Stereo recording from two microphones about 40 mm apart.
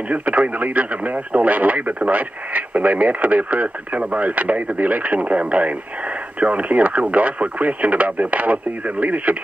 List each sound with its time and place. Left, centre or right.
0.1 s speech: right